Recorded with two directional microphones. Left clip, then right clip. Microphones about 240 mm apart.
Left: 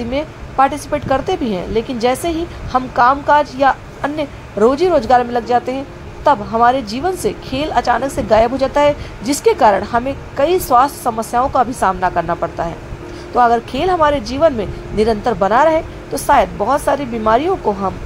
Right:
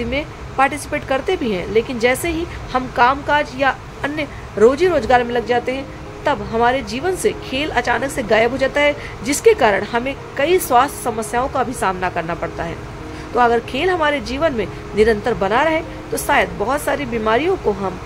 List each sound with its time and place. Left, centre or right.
0.1 s a woman's voice: centre